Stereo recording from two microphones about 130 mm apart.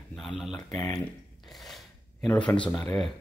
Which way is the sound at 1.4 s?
Centre (ahead or behind).